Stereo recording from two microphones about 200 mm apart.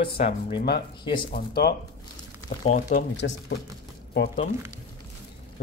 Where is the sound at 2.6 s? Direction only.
40° left (ahead or behind).